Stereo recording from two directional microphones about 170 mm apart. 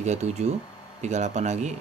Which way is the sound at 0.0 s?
40° right (ahead or behind).